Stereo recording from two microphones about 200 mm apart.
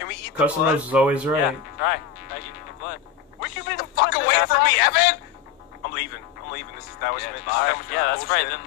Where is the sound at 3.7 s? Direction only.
55° left (ahead or behind).